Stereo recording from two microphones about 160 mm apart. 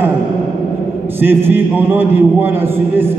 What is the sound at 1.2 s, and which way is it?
A man's voice, 15° right (ahead or behind).